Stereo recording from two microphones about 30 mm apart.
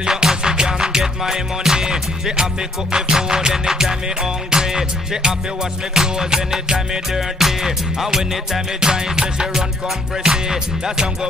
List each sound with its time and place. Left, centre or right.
0.2 s music: right
7.2 s music: centre